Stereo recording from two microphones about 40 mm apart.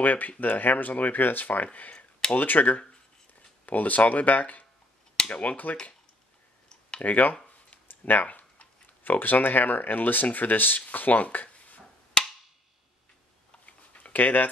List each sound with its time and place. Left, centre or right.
0.0 s speech: left
2.3 s speech: left
7.0 s speech: left
12.2 s percussion: centre
13.7 s a sound: left
14.1 s speech: left